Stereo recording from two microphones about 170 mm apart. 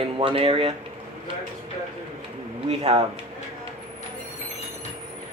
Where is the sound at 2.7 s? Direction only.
35° right (ahead or behind).